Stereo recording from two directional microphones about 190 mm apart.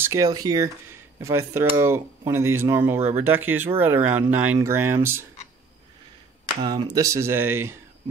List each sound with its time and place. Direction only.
0.0 s speech: 15° right (ahead or behind)
6.6 s speech: 20° right (ahead or behind)